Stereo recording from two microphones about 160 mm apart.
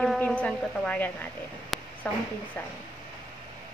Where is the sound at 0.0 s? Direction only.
5° left (ahead or behind).